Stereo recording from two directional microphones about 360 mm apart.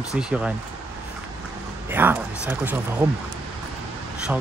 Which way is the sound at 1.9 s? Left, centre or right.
Centre.